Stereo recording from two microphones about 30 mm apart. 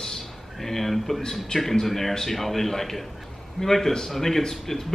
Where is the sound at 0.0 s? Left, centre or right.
Centre.